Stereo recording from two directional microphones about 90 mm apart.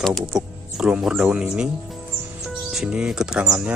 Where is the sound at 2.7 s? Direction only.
5° right (ahead or behind).